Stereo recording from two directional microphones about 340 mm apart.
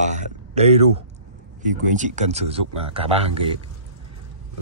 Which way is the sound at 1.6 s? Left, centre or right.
Right.